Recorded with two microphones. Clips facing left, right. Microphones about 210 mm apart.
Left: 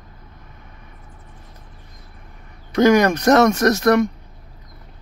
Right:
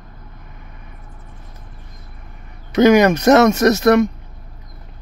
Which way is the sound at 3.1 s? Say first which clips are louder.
Right 3 dB; 25° right (ahead or behind).